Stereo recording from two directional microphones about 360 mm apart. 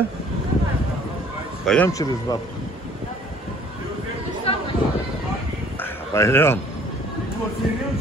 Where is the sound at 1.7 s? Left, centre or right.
Centre.